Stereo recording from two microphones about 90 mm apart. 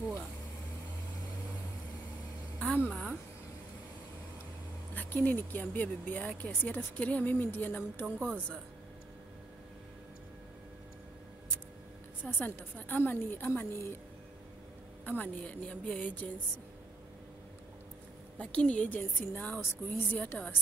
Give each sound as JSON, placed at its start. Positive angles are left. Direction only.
{"t": 2.6, "sound": "a sound", "side_deg": 15}
{"t": 2.9, "sound": "a sound", "side_deg": 5}
{"t": 4.9, "sound": "speech", "side_deg": 20}
{"t": 12.2, "sound": "speech", "side_deg": 20}
{"t": 15.0, "sound": "a woman's voice", "side_deg": 15}
{"t": 18.4, "sound": "a woman's voice", "side_deg": 10}